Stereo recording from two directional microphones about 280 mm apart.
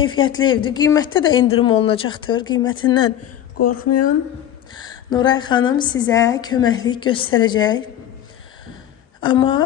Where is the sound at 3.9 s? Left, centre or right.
Left.